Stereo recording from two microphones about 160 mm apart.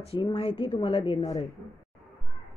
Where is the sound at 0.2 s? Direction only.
35° left (ahead or behind).